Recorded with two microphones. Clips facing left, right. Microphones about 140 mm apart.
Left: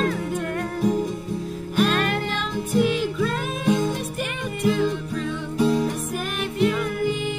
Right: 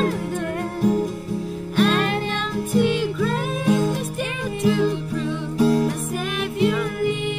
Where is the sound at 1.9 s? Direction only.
25° right (ahead or behind).